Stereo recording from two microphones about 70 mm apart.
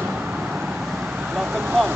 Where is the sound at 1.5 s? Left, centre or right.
Right.